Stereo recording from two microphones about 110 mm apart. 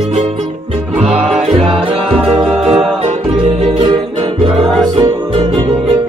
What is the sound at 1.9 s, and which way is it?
Music, 60° right (ahead or behind).